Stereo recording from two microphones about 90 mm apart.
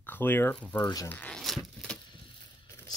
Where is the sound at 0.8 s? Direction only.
45° left (ahead or behind).